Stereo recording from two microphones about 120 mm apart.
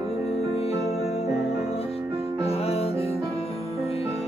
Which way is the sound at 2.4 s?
55° left (ahead or behind).